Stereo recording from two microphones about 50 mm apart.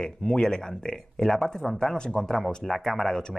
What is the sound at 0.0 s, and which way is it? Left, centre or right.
A man's voice, centre.